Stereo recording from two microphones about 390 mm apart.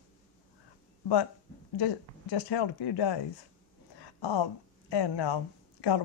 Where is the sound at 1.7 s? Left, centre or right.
Left.